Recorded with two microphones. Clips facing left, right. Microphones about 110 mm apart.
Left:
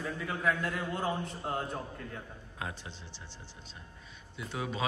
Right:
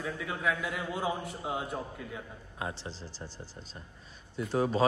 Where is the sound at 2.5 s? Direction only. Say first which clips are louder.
Right 3 dB; 25° right (ahead or behind).